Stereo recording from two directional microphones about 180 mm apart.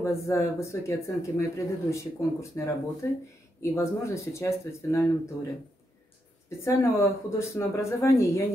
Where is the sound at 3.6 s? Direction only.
15° left (ahead or behind).